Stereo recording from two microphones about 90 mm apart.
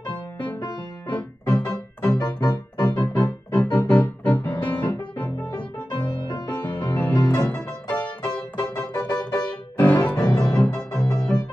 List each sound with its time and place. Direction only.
1.5 s music: 15° left (ahead or behind)
2.1 s music: 50° left (ahead or behind)
2.8 s music: 15° left (ahead or behind)
5.9 s music: 60° left (ahead or behind)
6.4 s music: 20° left (ahead or behind)